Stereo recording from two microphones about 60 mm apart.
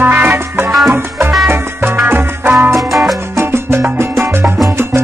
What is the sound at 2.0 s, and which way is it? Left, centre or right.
Music, right.